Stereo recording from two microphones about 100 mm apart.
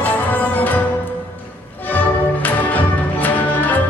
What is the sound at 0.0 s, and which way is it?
Music, 15° left (ahead or behind).